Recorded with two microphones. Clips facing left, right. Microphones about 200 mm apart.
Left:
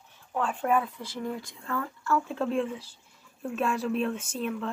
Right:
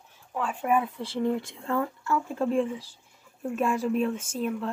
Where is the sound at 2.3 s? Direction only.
15° right (ahead or behind).